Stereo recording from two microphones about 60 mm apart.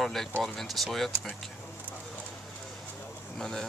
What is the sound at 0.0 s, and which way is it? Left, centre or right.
Speech, centre.